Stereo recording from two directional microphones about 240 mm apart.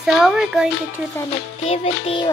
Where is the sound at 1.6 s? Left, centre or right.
Left.